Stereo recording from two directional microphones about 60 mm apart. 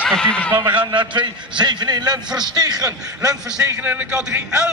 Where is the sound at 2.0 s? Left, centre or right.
Right.